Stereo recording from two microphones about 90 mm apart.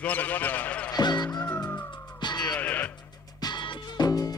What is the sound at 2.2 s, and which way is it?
Music, 50° left (ahead or behind).